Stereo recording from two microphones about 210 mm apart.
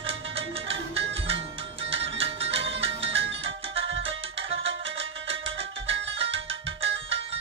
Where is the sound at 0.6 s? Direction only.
60° right (ahead or behind).